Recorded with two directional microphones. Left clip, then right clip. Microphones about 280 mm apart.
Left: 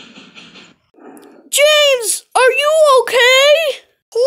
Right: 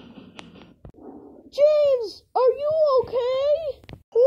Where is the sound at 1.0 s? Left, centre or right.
Left.